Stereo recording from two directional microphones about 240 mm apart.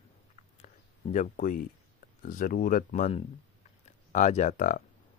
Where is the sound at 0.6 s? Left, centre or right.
Left.